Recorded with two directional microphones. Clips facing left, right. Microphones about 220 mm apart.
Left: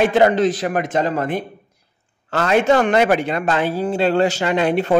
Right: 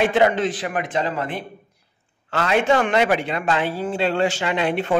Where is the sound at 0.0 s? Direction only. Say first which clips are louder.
Left 4 dB; 40° left (ahead or behind).